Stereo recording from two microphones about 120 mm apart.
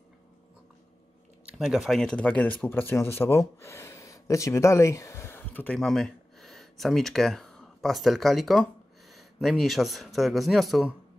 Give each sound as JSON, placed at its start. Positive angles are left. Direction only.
{"t": 1.4, "sound": "speech", "side_deg": -5}
{"t": 5.8, "sound": "speech", "side_deg": 5}